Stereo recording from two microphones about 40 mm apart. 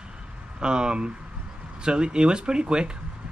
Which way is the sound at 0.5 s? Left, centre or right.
Right.